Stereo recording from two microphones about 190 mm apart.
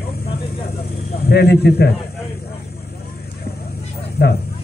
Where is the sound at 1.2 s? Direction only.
60° left (ahead or behind).